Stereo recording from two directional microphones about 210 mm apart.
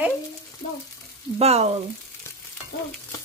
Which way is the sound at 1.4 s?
30° right (ahead or behind).